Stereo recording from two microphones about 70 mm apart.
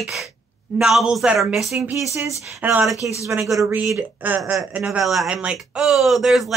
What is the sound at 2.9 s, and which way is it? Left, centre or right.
Speech, left.